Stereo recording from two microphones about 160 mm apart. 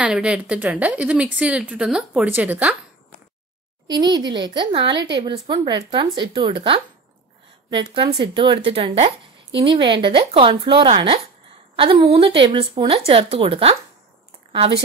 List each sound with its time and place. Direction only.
0.0 s a woman's voice: 5° right (ahead or behind)
3.8 s a woman's voice: 25° right (ahead or behind)